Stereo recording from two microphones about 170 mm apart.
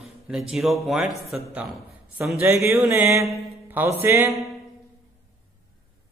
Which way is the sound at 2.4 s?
15° right (ahead or behind).